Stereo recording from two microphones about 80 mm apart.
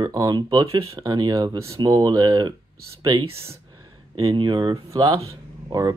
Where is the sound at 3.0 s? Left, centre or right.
Right.